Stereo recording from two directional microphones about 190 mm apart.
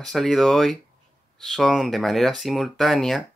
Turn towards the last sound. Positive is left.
turn(degrees=0)  # may be behind; listen again after turning